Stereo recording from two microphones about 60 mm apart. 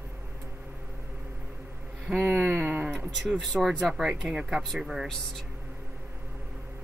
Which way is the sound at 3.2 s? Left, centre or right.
Centre.